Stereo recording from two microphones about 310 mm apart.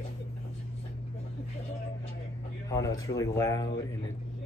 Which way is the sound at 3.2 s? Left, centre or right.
Centre.